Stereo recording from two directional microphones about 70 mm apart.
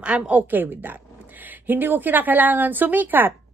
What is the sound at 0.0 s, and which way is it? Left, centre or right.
A woman's voice, centre.